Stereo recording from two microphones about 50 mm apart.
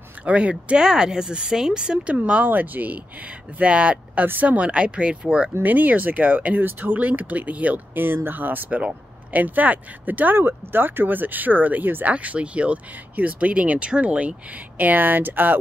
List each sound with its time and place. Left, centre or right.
0.2 s speech: right
0.8 s speech: centre
2.1 s speech: right
2.4 s speech: right; by 5.5 s centre
5.6 s speech: right
7.9 s speech: right
8.6 s speech: right
14.8 s speech: right